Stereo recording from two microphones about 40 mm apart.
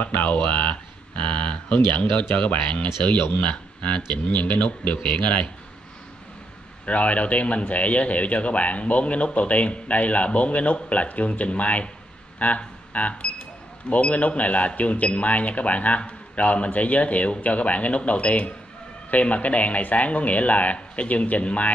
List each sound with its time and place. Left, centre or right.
0.0 s a man's voice: left
6.9 s a man's voice: left